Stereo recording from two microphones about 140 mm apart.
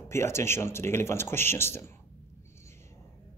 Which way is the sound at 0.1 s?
20° left (ahead or behind).